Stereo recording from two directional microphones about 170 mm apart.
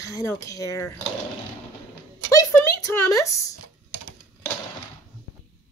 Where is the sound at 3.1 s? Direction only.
20° left (ahead or behind).